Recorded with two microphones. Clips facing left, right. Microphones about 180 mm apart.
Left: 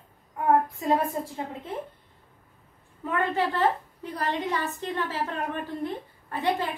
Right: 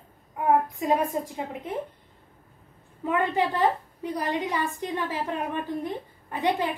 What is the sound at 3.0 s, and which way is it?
A woman's voice, 15° right (ahead or behind).